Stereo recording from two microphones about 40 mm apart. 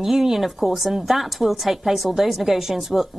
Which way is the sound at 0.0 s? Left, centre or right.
Centre.